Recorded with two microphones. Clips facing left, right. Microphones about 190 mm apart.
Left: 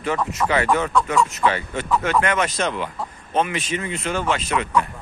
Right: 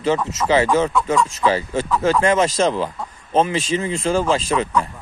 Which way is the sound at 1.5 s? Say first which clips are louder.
Right 3 dB; 30° right (ahead or behind).